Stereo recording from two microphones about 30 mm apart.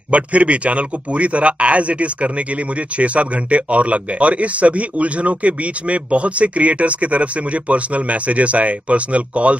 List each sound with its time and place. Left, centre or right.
0.1 s speech: right